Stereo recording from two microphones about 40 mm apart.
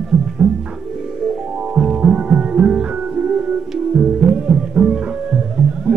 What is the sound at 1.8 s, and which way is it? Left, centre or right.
Music, right.